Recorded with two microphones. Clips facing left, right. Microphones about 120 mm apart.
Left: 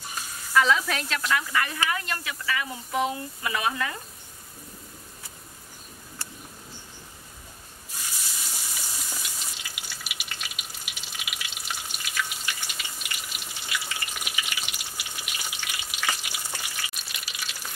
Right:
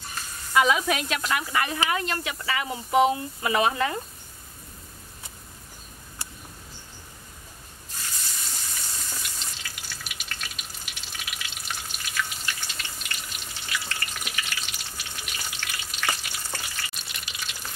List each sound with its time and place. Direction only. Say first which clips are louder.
0.2 s frying: even; 10° left (ahead or behind)
0.5 s sizzle: right 1 dB; 15° right (ahead or behind)
1.3 s speech: even; 20° right (ahead or behind)
8.5 s water: even; 10° left (ahead or behind)
16.2 s frying: right 1 dB; 10° left (ahead or behind)
17.1 s water: even; 5° left (ahead or behind)